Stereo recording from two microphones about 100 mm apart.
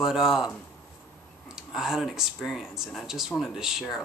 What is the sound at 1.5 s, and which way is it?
Speech, 5° right (ahead or behind).